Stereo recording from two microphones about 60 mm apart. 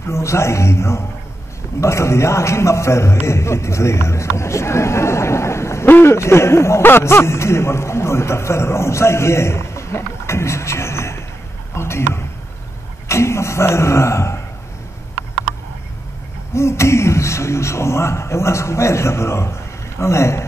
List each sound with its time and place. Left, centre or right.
0.0 s a man's voice: left
16.5 s a man's voice: left